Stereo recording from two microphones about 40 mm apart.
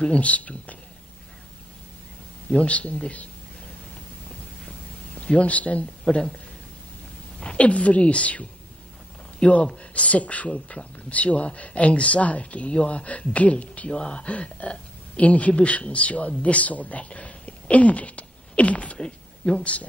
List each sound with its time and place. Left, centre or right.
0.0 s speech: left
2.5 s speech: left
5.2 s speech: left
6.0 s speech: centre
7.3 s speech: left
18.9 s speech: left